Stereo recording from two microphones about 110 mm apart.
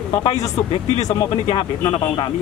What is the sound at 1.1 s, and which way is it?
Speech, 30° left (ahead or behind).